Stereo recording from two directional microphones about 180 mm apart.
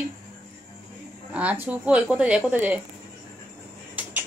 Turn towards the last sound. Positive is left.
turn(degrees=-10)  # may be behind; listen again after turning